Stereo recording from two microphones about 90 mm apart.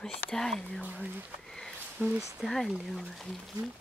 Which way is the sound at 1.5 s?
5° left (ahead or behind).